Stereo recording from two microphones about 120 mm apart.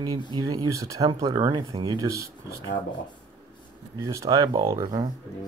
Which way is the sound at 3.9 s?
25° right (ahead or behind).